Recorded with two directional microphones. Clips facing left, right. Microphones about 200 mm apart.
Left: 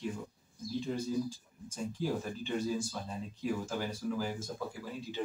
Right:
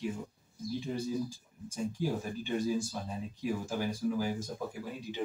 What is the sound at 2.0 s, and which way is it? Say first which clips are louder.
Speech: left 1 dB; 10° right (ahead or behind).